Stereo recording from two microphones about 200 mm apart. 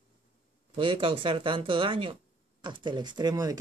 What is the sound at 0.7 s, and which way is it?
Speech, 25° right (ahead or behind).